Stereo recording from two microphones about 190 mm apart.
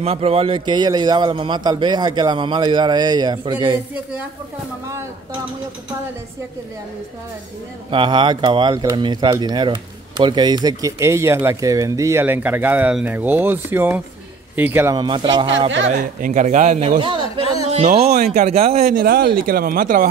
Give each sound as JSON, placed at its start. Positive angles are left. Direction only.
{"t": 0.0, "sound": "a man's voice", "side_deg": -30}
{"t": 7.9, "sound": "a man's voice", "side_deg": -25}
{"t": 15.9, "sound": "a man's voice", "side_deg": -45}
{"t": 18.2, "sound": "a man's voice", "side_deg": -35}
{"t": 18.9, "sound": "speech", "side_deg": -50}